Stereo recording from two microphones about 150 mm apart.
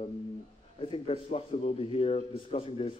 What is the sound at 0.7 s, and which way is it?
A man's voice, 40° left (ahead or behind).